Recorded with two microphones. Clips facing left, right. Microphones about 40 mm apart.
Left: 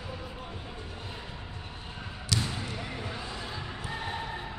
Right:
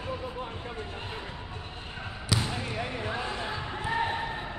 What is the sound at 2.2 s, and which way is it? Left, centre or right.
Basketball bounce, centre.